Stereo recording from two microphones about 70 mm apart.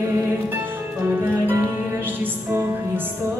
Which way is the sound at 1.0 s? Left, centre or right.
Right.